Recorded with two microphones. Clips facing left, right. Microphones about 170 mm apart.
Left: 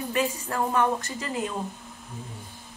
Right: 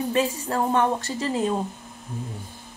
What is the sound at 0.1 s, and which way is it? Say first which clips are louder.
A woman's voice: right 1 dB; 30° right (ahead or behind).